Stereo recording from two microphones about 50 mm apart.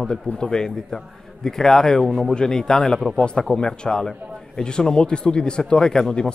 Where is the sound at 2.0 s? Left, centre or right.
Centre.